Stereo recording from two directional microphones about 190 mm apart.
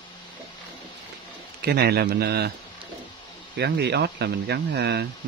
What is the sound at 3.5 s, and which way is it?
Speech, 60° right (ahead or behind).